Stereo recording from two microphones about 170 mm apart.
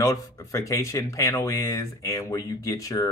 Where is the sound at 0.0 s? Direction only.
20° left (ahead or behind).